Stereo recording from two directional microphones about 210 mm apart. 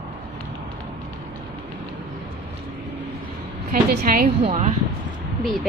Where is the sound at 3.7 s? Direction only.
40° right (ahead or behind).